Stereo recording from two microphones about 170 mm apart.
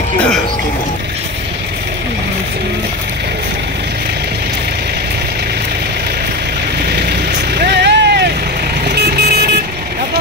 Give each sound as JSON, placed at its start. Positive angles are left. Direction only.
{"t": 7.5, "sound": "vehicle", "side_deg": -75}